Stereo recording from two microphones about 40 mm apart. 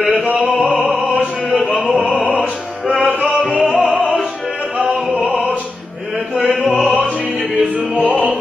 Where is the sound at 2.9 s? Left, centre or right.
Right.